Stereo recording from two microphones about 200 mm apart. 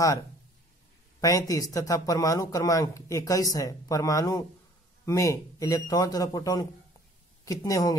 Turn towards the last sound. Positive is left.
turn(degrees=15)  # may be behind; listen again after turning